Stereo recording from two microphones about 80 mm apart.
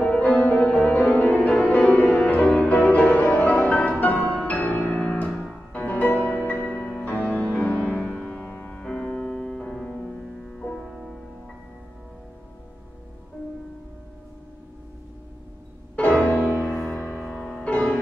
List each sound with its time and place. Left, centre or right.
0.0 s music: centre
8.8 s music: centre
16.0 s music: centre
16.3 s music: right
16.7 s music: left
17.1 s music: centre
17.5 s music: centre